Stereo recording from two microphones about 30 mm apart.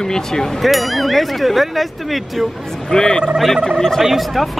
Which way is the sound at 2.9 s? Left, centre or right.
Left.